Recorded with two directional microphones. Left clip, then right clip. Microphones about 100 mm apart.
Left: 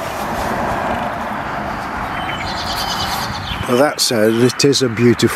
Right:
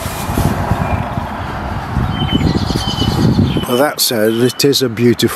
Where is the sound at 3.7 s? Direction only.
10° right (ahead or behind).